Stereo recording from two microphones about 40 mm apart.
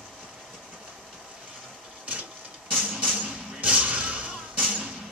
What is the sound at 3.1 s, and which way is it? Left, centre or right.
Music, right.